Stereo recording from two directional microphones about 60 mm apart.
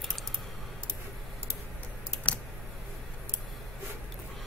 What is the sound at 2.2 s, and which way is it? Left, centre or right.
Computer keyboard, centre.